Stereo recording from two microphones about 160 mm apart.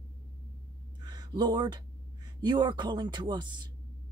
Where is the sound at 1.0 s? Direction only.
25° right (ahead or behind).